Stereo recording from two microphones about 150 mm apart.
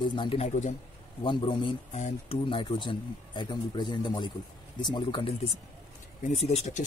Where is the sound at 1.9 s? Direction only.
50° left (ahead or behind).